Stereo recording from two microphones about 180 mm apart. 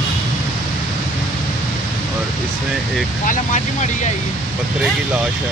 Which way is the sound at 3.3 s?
45° left (ahead or behind).